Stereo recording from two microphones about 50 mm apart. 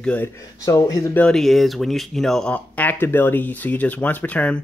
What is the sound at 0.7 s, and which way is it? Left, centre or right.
Speech, left.